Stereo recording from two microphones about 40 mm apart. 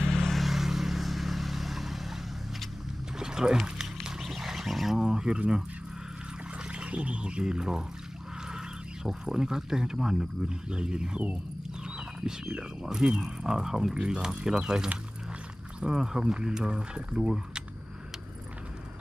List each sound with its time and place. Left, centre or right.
0.0 s vehicle: centre
3.2 s a sound: centre
4.2 s a sound: centre
4.9 s speech: centre
6.7 s speech: right
9.0 s speech: centre
10.7 s speech: right
12.2 s speech: centre
16.0 s speech: centre